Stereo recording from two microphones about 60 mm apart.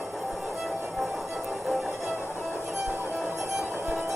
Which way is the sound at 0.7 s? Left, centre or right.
Centre.